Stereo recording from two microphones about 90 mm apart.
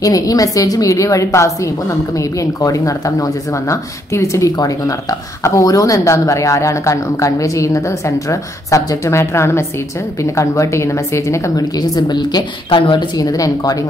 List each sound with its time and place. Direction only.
0.0 s a woman's voice: 40° left (ahead or behind)
12.6 s speech: 70° left (ahead or behind)
13.2 s speech: 45° left (ahead or behind)